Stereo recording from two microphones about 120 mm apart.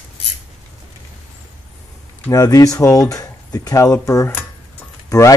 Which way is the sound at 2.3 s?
30° left (ahead or behind).